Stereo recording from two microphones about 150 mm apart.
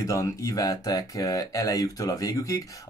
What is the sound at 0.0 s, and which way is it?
Speech, 20° left (ahead or behind).